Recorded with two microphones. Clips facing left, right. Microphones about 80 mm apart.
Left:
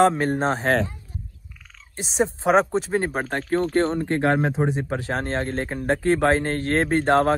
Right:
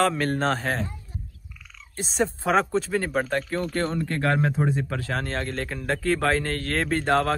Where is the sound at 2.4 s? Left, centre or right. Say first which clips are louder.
Left 4 dB; left.